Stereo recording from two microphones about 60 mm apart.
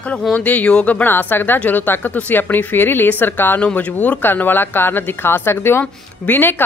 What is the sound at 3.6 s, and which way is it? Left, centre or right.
Speech, left.